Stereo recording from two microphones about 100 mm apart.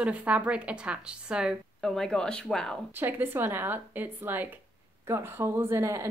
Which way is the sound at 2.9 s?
20° right (ahead or behind).